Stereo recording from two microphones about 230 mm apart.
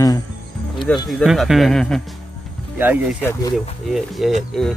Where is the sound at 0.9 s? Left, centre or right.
Centre.